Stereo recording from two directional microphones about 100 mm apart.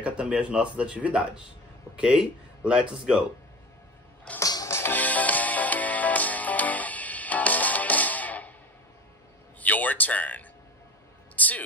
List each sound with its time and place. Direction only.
0.0 s speech: 10° right (ahead or behind)
4.4 s music: 35° left (ahead or behind)
4.7 s music: 20° left (ahead or behind)
9.6 s a sound: 15° left (ahead or behind)